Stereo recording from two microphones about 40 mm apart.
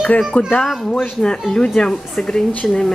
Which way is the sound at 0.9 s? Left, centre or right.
Centre.